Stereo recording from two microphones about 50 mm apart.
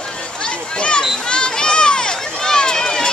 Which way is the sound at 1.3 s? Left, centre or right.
Centre.